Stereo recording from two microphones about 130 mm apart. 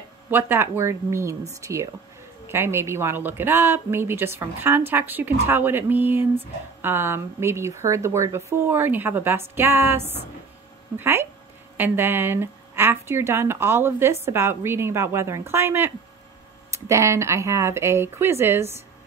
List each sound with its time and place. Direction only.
0.3 s speech: 15° right (ahead or behind)